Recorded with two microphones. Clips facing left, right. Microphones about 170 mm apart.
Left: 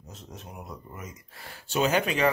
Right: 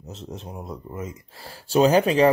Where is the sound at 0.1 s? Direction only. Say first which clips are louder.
Right 8 dB; 25° right (ahead or behind).